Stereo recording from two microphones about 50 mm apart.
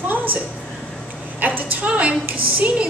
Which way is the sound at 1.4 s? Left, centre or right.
Right.